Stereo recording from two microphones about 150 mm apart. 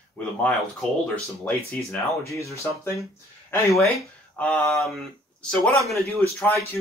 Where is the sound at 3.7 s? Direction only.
Centre (ahead or behind).